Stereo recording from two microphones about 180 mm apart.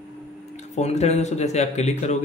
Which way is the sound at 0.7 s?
40° left (ahead or behind).